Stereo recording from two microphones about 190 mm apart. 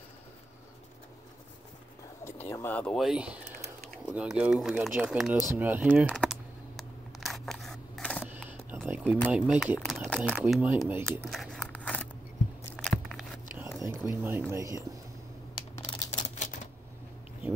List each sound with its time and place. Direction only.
2.5 s speech: 10° left (ahead or behind); by 6.0 s 10° right (ahead or behind)
6.0 s typing: centre (ahead or behind)
6.8 s scissors: centre (ahead or behind)
8.2 s a sound: 10° right (ahead or behind)
9.3 s speech: 5° right (ahead or behind)
10.4 s speech: 10° right (ahead or behind)
11.2 s a sound: centre (ahead or behind)
14.0 s speech: 15° right (ahead or behind)
15.5 s computer keyboard: 25° left (ahead or behind)